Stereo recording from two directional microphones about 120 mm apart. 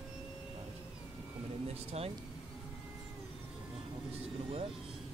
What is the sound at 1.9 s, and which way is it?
Speech, 60° right (ahead or behind).